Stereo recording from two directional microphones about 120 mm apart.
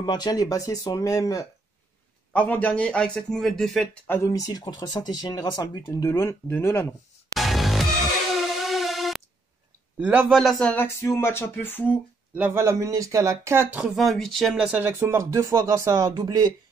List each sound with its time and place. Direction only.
0.0 s speech: 35° left (ahead or behind)
2.3 s speech: 10° left (ahead or behind)
4.1 s speech: 25° left (ahead or behind)
7.3 s music: centre (ahead or behind)
9.9 s a man's voice: 10° right (ahead or behind)
10.3 s speech: centre (ahead or behind)
10.7 s speech: 20° left (ahead or behind)
12.4 s speech: 20° right (ahead or behind)
13.7 s speech: 5° right (ahead or behind); by 16.5 s 35° right (ahead or behind)